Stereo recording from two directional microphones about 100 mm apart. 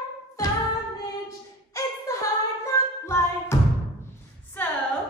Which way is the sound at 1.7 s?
30° left (ahead or behind).